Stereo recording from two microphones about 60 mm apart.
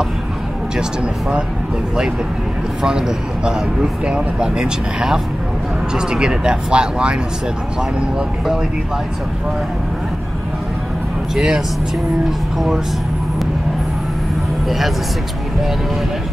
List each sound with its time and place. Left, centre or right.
0.7 s a man's voice: centre
2.8 s a man's voice: centre
11.3 s a man's voice: centre